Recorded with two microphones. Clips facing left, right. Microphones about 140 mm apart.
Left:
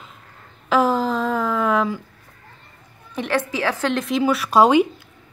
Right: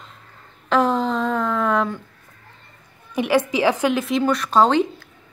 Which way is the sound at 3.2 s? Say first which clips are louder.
Right 4 dB; 10° right (ahead or behind).